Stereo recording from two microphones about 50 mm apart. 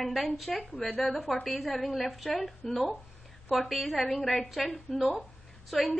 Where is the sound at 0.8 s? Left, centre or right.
Centre.